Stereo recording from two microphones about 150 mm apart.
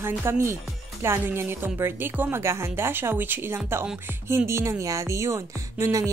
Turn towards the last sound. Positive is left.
turn(degrees=-20)  # may be behind; listen again after turning